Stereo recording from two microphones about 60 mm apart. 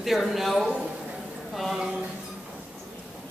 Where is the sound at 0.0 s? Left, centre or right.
Centre.